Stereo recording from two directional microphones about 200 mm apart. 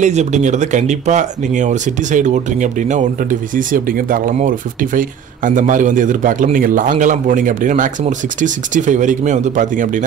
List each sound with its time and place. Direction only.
0.0 s speech: 35° right (ahead or behind)